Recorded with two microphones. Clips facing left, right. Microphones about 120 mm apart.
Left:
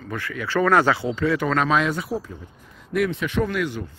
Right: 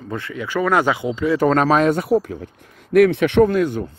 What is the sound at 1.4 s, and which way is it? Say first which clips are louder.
Speech: right 6 dB; 40° right (ahead or behind).